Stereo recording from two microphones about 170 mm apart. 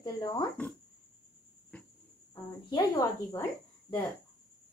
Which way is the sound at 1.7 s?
10° left (ahead or behind).